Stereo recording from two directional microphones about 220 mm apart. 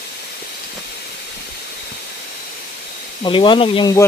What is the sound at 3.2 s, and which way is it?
Speech, 20° left (ahead or behind).